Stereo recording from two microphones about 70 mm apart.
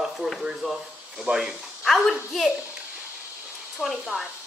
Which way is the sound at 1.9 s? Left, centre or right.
Centre.